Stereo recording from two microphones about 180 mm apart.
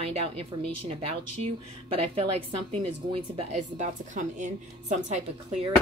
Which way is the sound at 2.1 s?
30° right (ahead or behind).